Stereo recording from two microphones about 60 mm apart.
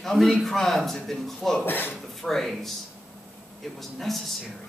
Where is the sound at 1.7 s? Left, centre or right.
Left.